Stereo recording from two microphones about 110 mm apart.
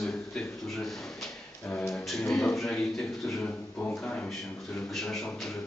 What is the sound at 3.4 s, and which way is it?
Speech, 15° left (ahead or behind).